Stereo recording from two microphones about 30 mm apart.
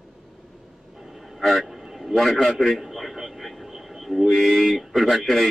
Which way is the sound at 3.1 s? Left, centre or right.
Centre.